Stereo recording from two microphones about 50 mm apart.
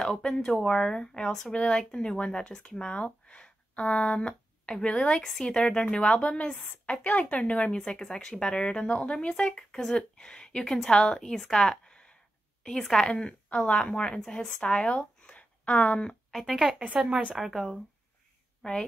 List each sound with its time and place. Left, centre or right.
0.0 s speech: centre
5.2 s speech: centre; by 7.7 s left
7.7 s a woman's voice: centre
16.3 s a woman's voice: centre
16.7 s speech: right
17.4 s a woman's voice: centre
18.6 s a woman's voice: centre